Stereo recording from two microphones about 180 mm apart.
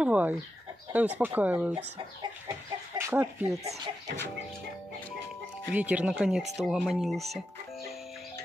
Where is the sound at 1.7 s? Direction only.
20° right (ahead or behind).